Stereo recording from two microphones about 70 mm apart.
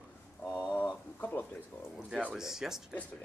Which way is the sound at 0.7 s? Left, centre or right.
Left.